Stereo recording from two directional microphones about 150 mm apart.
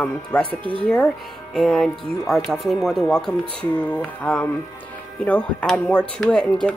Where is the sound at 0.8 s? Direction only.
5° left (ahead or behind).